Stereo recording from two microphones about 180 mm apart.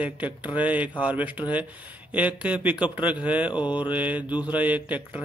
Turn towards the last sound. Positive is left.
turn(degrees=-10)  # may be behind; listen again after turning